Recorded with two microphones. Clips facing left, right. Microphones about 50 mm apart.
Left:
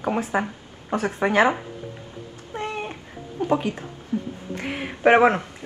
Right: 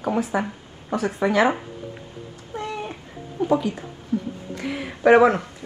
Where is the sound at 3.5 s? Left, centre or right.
Left.